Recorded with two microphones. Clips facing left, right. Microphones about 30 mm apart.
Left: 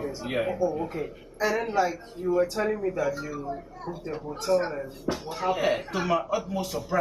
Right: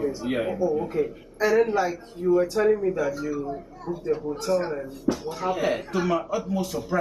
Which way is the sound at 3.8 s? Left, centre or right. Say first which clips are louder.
Right 4 dB; left.